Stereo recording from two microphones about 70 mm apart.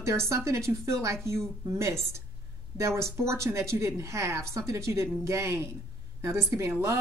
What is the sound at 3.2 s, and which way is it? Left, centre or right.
Speech, right.